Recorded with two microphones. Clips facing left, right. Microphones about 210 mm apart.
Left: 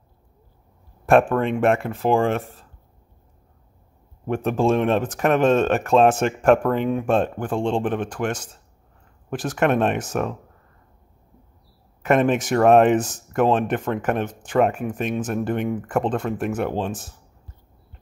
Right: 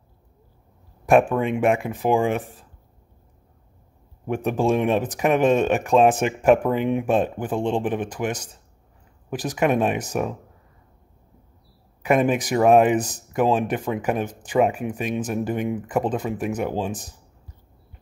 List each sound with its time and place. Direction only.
1.0 s speech: 15° right (ahead or behind)
4.3 s speech: 15° right (ahead or behind)
12.0 s speech: 10° right (ahead or behind)